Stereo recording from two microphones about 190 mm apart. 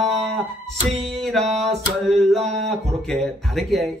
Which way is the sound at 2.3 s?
35° right (ahead or behind).